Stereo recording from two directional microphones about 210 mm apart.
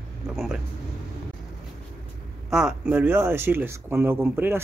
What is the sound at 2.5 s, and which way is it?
Speech, 5° right (ahead or behind).